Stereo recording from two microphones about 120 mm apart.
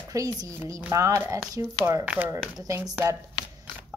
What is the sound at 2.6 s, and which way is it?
Speech, 25° right (ahead or behind).